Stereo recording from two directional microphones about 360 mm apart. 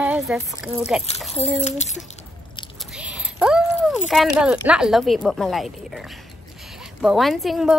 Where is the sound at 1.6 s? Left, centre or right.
Centre.